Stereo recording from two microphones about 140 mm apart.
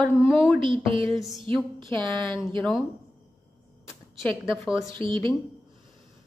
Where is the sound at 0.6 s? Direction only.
35° right (ahead or behind).